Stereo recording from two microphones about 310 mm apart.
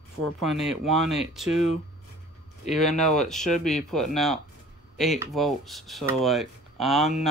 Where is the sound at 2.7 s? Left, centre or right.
Centre.